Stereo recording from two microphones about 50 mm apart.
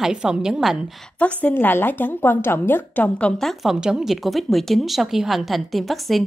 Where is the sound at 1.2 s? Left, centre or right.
Left.